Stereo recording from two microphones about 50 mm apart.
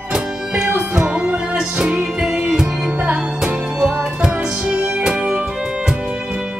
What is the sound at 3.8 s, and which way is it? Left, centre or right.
Music, centre.